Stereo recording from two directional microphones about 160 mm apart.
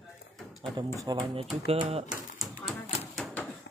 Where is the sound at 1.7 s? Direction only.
40° right (ahead or behind).